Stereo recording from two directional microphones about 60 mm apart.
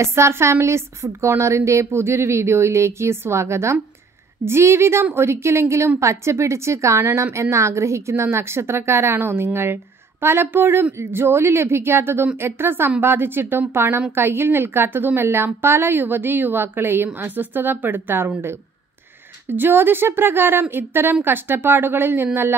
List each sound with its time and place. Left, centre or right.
0.0 s a woman's voice: right
19.5 s a woman's voice: right